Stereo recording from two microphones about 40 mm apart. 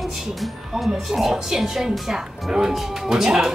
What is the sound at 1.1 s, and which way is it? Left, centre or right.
A woman's voice, centre.